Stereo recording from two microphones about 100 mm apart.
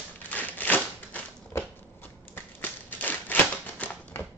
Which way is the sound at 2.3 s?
20° left (ahead or behind).